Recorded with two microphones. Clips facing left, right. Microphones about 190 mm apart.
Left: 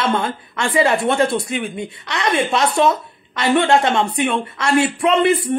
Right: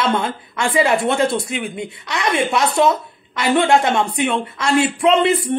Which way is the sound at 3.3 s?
15° right (ahead or behind).